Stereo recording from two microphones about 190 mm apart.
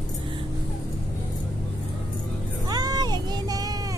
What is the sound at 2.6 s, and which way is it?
Vehicle, 20° right (ahead or behind).